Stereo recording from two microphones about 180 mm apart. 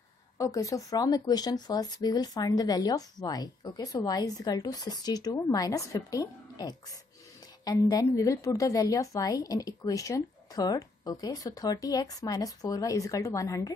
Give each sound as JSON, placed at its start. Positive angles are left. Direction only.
{"t": 0.4, "sound": "speech", "side_deg": 15}